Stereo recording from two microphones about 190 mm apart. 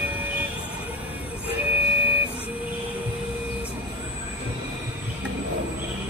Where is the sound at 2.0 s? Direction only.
10° right (ahead or behind).